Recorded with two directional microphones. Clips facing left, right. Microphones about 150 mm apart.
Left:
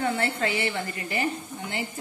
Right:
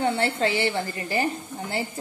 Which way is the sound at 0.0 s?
30° right (ahead or behind).